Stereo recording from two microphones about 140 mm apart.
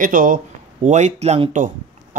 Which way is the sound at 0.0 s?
75° right (ahead or behind).